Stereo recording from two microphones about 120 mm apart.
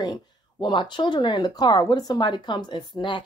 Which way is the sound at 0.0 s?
35° left (ahead or behind).